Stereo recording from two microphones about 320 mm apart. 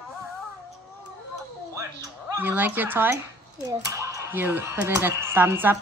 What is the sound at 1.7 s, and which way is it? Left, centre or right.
Speech, centre.